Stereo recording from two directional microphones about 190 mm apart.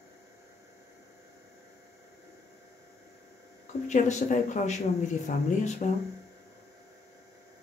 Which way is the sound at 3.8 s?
40° left (ahead or behind).